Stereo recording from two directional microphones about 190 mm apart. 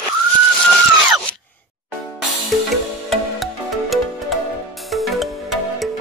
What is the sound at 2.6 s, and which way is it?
Music, centre (ahead or behind).